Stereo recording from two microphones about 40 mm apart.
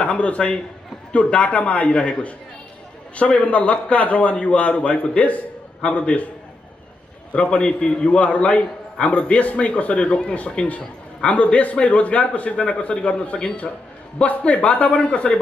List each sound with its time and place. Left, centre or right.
0.0 s a man's voice: left
7.3 s a man's voice: left